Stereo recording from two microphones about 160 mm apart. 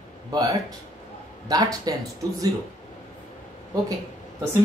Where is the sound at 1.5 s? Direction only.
25° right (ahead or behind).